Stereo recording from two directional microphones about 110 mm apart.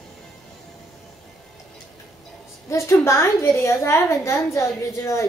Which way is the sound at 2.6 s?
25° left (ahead or behind).